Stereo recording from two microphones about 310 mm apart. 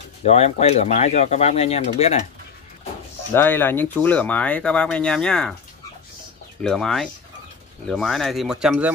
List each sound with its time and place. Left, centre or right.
0.2 s speech: left
3.3 s speech: centre
6.6 s speech: centre